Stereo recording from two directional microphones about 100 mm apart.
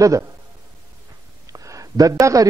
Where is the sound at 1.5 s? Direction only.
35° right (ahead or behind).